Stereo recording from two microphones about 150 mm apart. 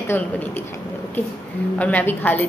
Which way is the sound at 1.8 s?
10° left (ahead or behind).